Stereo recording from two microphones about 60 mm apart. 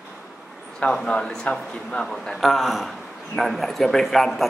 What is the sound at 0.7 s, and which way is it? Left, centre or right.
Speech, centre.